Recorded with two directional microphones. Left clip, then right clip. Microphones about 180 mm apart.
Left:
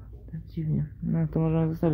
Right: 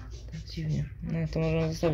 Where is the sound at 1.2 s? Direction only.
45° left (ahead or behind).